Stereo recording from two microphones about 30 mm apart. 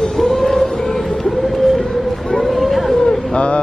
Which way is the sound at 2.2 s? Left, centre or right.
Left.